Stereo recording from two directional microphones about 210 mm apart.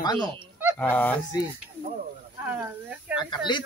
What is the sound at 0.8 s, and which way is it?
Speech, 10° left (ahead or behind).